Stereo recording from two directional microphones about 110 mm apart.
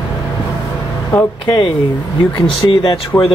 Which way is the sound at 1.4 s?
50° left (ahead or behind).